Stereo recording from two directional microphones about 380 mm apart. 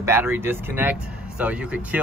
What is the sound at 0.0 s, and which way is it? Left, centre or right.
Speech, centre.